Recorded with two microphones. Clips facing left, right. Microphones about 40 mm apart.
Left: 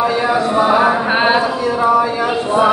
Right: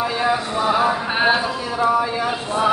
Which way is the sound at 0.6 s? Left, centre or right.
Left.